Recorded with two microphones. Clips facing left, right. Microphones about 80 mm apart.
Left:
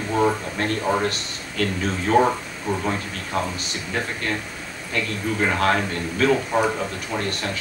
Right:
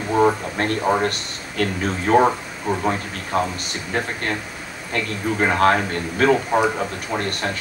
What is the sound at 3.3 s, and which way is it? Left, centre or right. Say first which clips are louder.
Speech: right 4 dB; right.